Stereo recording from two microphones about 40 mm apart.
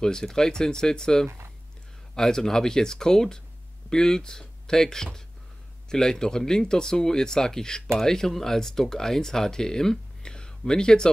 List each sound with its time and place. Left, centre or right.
0.0 s speech: centre